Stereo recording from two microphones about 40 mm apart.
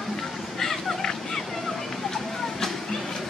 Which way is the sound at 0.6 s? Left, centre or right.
Centre.